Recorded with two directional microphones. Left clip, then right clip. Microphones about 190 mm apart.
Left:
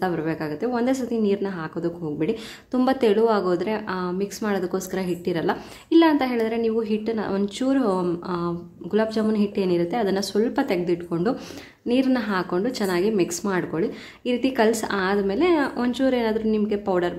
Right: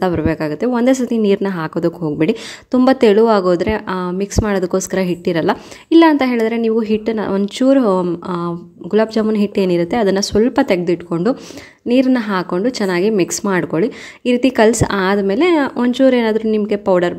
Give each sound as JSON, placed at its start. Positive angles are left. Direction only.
{"t": 0.0, "sound": "speech", "side_deg": -40}